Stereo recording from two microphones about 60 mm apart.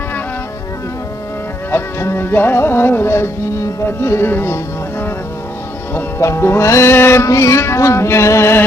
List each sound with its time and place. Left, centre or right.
1.7 s music: left
4.3 s speech: left
5.9 s music: left
7.2 s music: left